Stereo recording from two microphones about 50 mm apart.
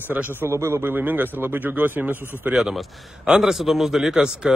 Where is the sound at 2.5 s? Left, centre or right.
Centre.